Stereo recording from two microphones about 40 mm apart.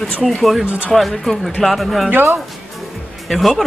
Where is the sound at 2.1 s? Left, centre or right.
Right.